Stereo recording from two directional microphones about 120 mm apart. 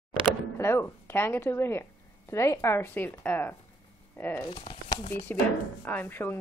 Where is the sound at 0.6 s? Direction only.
20° left (ahead or behind).